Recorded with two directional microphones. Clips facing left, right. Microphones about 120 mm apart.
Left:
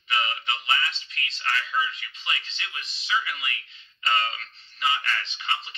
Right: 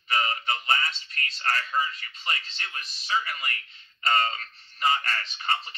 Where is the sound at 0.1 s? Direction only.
40° right (ahead or behind).